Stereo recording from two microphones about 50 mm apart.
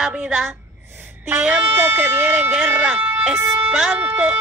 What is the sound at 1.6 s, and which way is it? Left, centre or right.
Speech, right.